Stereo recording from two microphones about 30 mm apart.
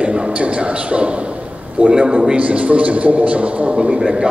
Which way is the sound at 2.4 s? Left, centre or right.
Right.